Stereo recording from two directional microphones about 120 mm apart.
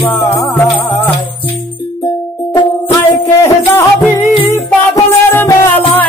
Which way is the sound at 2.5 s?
40° left (ahead or behind).